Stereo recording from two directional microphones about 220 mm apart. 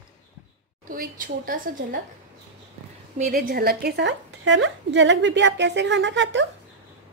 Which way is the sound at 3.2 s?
40° right (ahead or behind).